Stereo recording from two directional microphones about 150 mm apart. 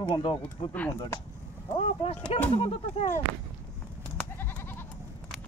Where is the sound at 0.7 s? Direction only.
15° left (ahead or behind).